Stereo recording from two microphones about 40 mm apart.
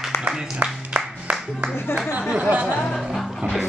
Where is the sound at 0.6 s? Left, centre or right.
Right.